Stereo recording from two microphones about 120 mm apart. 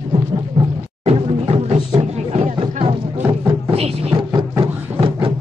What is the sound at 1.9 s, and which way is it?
Music, 60° right (ahead or behind).